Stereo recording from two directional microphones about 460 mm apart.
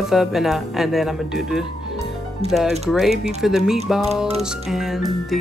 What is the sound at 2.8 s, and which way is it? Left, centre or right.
Speech, centre.